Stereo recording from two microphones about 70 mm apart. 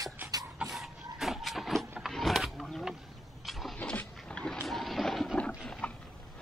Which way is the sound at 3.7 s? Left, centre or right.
Centre.